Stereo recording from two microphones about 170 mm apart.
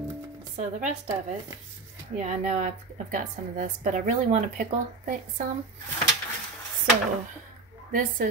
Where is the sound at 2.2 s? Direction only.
45° right (ahead or behind).